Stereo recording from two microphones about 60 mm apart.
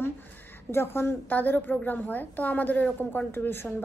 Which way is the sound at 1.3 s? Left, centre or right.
Left.